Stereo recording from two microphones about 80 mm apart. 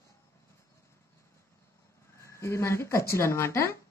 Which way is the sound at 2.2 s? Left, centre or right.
Left.